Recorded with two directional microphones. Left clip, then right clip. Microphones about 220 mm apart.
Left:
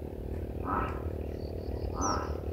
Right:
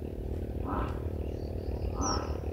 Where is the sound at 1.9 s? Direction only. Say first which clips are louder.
Left 1 dB; 35° left (ahead or behind).